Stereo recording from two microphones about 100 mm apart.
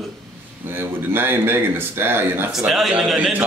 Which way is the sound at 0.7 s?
20° right (ahead or behind).